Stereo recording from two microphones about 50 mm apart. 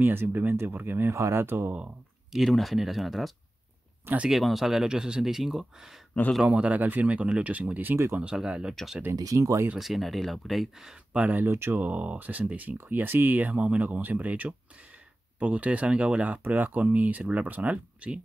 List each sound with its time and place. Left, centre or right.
0.0 s speech: right
1.1 s speech: right
1.4 s speech: right
2.3 s speech: centre
6.4 s speech: right
7.9 s speech: right
8.4 s speech: centre
9.3 s speech: right
9.8 s speech: centre
11.1 s speech: right
11.4 s speech: right
11.8 s speech: right
16.4 s speech: right